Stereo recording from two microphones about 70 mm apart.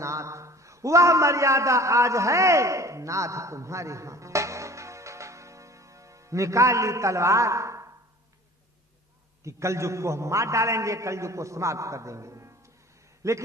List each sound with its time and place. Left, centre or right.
0.0 s a man's voice: right
9.4 s a man's voice: right